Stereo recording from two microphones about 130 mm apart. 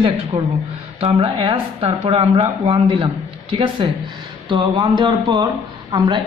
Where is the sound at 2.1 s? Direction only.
55° right (ahead or behind).